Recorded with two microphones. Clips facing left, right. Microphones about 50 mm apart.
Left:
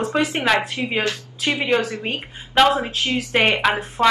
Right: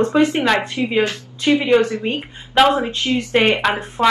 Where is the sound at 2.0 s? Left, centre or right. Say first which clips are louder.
Right 4 dB; left.